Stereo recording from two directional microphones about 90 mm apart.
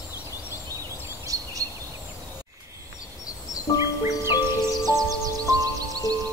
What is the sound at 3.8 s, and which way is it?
Music, 35° right (ahead or behind).